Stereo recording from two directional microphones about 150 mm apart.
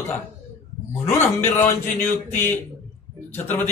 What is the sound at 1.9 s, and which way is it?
Speech, 15° left (ahead or behind).